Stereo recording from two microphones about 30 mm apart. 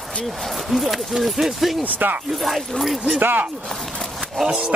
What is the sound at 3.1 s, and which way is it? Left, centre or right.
Speech, right.